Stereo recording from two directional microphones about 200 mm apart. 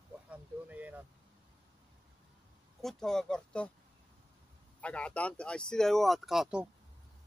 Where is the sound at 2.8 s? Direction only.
Centre (ahead or behind).